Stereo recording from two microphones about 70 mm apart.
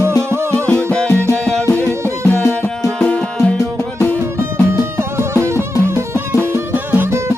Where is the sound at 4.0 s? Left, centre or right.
Left.